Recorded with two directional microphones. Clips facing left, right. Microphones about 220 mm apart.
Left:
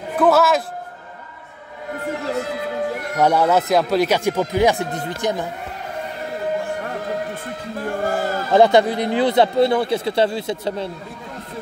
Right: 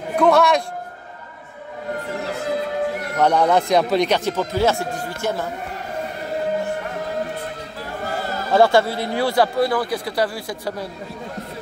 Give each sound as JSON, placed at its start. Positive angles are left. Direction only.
{"t": 0.1, "sound": "a man's voice", "side_deg": 5}
{"t": 3.2, "sound": "speech", "side_deg": 10}
{"t": 7.8, "sound": "chant", "side_deg": 50}
{"t": 8.5, "sound": "speech", "side_deg": 20}